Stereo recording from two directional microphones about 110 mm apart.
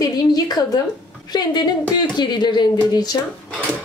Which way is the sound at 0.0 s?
35° left (ahead or behind).